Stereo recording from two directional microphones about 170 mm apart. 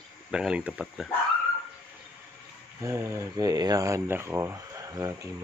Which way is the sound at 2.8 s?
15° right (ahead or behind).